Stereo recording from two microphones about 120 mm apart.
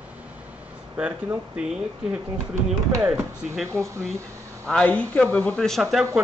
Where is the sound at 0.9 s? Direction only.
15° right (ahead or behind).